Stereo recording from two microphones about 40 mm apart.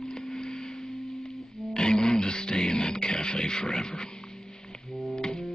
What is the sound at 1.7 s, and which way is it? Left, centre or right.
Music, left.